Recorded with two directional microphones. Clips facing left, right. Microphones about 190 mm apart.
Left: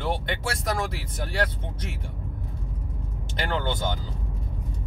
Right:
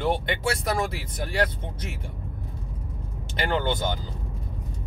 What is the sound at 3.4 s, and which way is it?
Speech, 15° right (ahead or behind).